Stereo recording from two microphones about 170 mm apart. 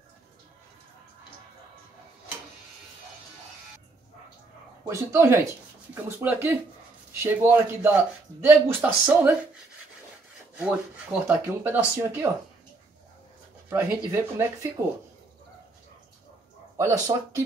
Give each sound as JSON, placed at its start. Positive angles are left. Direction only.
{"t": 4.8, "sound": "speech", "side_deg": -15}
{"t": 10.6, "sound": "speech", "side_deg": -10}
{"t": 13.7, "sound": "speech", "side_deg": -10}
{"t": 16.7, "sound": "speech", "side_deg": -20}